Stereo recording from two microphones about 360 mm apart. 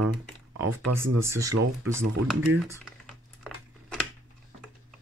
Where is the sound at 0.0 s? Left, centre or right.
Right.